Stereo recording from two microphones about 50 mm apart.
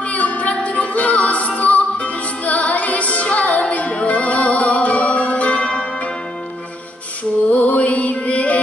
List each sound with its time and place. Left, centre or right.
0.0 s music: left
7.5 s music: left